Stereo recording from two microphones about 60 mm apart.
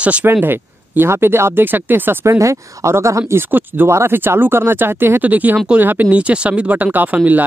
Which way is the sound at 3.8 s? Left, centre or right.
Right.